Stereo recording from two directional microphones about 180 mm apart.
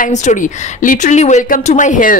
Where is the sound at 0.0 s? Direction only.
40° left (ahead or behind).